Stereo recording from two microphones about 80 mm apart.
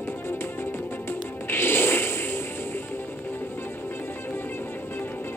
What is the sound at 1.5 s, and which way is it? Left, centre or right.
Music, left.